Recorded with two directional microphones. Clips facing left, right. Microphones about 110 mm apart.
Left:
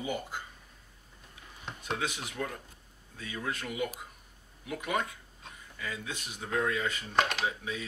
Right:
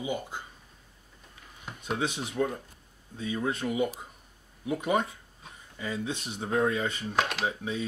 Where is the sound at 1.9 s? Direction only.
20° right (ahead or behind).